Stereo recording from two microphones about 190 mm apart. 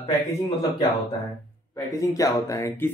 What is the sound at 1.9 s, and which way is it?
Speech, 15° left (ahead or behind).